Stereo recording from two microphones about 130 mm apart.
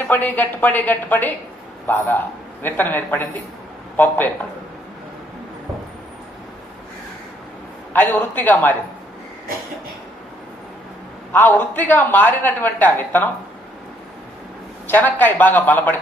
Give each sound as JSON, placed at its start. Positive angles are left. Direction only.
{"t": 0.1, "sound": "a woman's voice", "side_deg": 15}
{"t": 7.9, "sound": "a woman's voice", "side_deg": 15}
{"t": 11.3, "sound": "a woman's voice", "side_deg": 15}
{"t": 14.9, "sound": "a woman's voice", "side_deg": 15}